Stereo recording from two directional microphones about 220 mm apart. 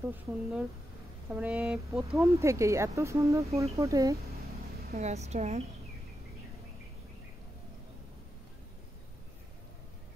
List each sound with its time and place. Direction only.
0.0 s speech: 5° right (ahead or behind)
2.1 s speech: 15° right (ahead or behind)
4.9 s a woman's voice: 30° right (ahead or behind)